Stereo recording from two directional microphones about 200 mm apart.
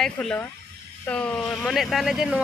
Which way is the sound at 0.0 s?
5° left (ahead or behind).